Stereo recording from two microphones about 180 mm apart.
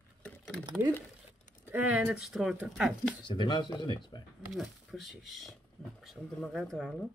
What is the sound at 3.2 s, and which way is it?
Speech, 25° left (ahead or behind).